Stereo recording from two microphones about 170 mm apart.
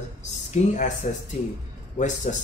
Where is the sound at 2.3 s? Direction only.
45° left (ahead or behind).